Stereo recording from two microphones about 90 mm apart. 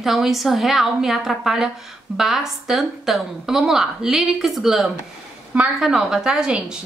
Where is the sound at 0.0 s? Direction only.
Centre (ahead or behind).